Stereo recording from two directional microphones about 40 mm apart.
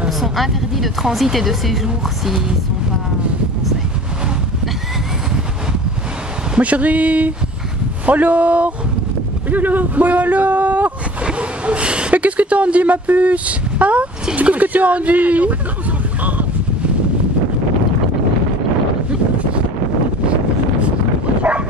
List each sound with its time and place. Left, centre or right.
0.2 s a woman's voice: centre
6.6 s speech: right
9.5 s speech: right
11.2 s gasp: right
12.2 s speech: right
16.2 s a sound: right
21.4 s dog: right